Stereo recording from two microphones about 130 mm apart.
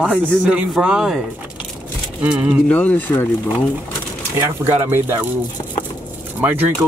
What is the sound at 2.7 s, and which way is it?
Speech, 10° left (ahead or behind).